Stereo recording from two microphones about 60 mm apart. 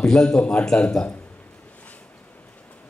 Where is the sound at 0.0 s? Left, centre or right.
Centre.